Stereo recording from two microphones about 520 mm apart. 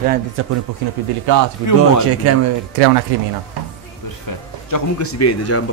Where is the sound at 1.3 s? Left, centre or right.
Right.